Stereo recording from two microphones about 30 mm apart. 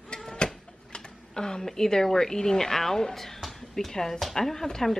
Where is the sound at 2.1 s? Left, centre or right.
Centre.